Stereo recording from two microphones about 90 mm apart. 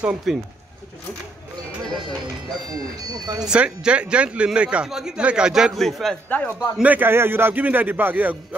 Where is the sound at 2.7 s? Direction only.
50° right (ahead or behind).